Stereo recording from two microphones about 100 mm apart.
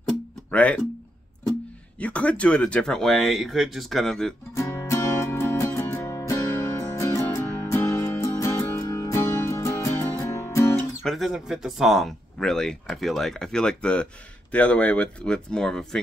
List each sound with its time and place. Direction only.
0.5 s speech: 15° left (ahead or behind)
2.0 s speech: 15° left (ahead or behind)
4.6 s music: 30° left (ahead or behind)
11.1 s speech: centre (ahead or behind)